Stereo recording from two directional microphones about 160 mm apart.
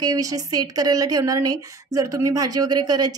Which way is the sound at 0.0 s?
25° right (ahead or behind).